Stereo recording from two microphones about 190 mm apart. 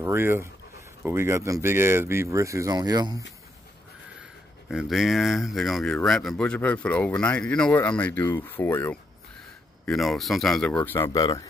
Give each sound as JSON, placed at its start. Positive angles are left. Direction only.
{"t": 0.0, "sound": "speech", "side_deg": -15}
{"t": 4.6, "sound": "speech", "side_deg": 0}
{"t": 9.8, "sound": "speech", "side_deg": 0}
{"t": 10.8, "sound": "speech", "side_deg": 15}